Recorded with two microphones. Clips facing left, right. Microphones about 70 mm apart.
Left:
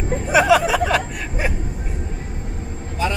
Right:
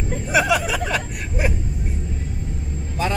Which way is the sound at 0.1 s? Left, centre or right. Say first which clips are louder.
Left 5 dB; left.